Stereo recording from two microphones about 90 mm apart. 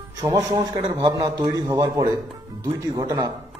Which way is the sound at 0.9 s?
45° right (ahead or behind).